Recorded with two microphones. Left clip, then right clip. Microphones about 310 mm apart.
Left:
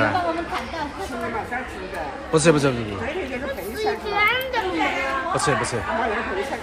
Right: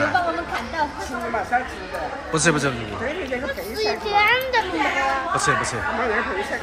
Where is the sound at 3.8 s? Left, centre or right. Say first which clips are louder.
Right 2 dB; right.